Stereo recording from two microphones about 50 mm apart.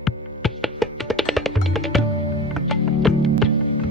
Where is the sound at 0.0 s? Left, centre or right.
Centre.